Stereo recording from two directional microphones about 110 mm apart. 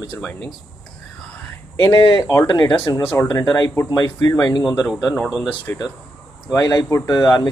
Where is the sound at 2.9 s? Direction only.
30° left (ahead or behind).